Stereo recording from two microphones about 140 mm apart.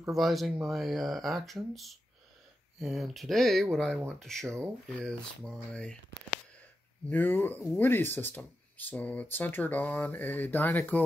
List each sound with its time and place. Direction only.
0.1 s speech: centre (ahead or behind)
7.1 s speech: 15° left (ahead or behind)